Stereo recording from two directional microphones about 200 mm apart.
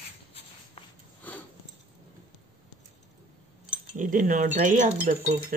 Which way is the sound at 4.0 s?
40° right (ahead or behind).